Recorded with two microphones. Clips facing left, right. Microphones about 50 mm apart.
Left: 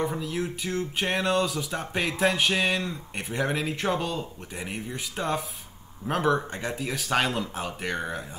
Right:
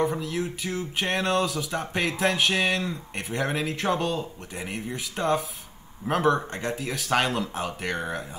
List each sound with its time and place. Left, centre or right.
0.0 s music: centre